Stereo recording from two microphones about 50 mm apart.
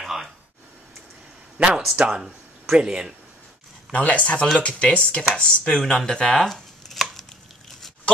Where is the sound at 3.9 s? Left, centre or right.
Left.